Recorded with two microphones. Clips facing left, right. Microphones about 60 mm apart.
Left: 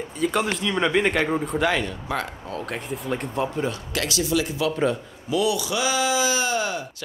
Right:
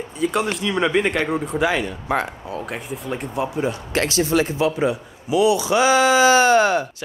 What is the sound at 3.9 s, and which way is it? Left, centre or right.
Speech, right.